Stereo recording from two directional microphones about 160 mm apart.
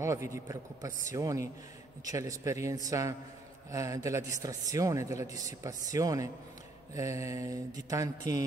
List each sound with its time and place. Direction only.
0.0 s a man's voice: 20° right (ahead or behind)